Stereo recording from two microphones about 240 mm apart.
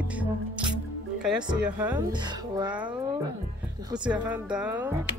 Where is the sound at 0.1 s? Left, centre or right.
Centre.